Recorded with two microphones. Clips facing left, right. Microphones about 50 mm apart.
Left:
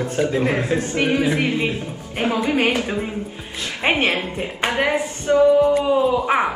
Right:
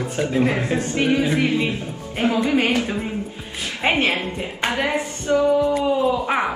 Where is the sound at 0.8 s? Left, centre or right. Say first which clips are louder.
Even; left.